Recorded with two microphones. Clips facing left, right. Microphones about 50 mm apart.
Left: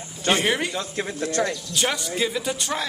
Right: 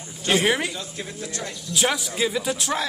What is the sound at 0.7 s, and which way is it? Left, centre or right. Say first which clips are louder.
Speech: left 6 dB; left.